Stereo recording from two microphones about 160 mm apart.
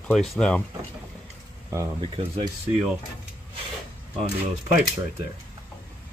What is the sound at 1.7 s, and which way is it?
Speech, 20° right (ahead or behind).